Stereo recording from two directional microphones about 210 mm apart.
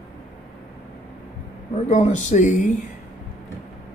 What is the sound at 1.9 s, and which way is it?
Speech, 35° left (ahead or behind).